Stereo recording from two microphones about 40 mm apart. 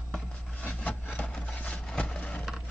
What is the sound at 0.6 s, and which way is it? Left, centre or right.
Rub, left.